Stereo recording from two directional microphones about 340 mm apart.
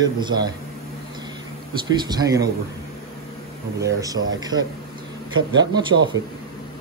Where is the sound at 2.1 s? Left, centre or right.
Centre.